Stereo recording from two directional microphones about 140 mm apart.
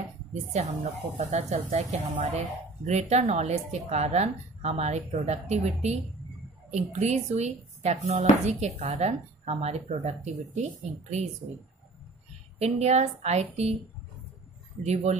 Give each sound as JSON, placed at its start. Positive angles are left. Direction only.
{"t": 0.3, "sound": "speech", "side_deg": -55}
{"t": 12.5, "sound": "speech", "side_deg": -50}
{"t": 14.8, "sound": "speech", "side_deg": -55}